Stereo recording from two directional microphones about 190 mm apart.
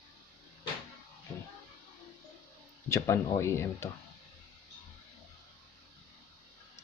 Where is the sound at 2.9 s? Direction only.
15° left (ahead or behind).